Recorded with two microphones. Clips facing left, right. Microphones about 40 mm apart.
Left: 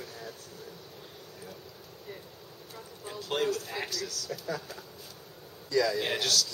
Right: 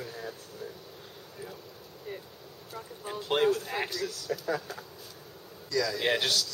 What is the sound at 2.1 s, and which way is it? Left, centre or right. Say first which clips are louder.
Speech: right 4 dB; right.